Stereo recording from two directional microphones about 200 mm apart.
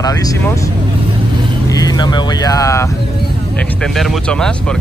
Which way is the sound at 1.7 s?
20° left (ahead or behind).